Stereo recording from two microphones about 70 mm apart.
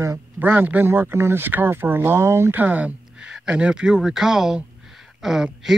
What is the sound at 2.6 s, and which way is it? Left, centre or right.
Speech, right.